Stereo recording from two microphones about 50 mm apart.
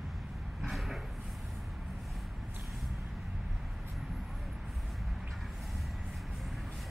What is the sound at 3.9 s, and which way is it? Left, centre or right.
Vehicle, centre.